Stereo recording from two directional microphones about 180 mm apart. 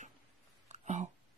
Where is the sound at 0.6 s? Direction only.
40° right (ahead or behind).